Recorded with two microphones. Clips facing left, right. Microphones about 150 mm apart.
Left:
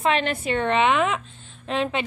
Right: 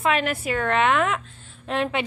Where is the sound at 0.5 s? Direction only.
20° left (ahead or behind).